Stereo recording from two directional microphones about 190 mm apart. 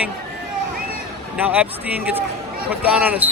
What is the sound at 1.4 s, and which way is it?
A man's voice, 10° right (ahead or behind).